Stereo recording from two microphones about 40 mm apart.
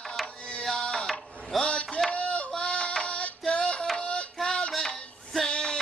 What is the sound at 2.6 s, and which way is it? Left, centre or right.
Music, left.